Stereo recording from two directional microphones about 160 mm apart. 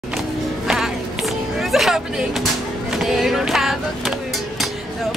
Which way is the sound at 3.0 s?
Centre (ahead or behind).